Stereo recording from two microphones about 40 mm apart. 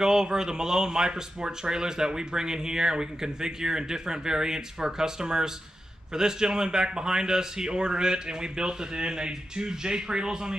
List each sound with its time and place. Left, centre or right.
0.0 s a man's voice: centre